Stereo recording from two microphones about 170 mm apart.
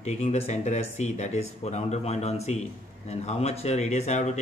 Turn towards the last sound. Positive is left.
turn(degrees=40)  # may be behind; listen again after turning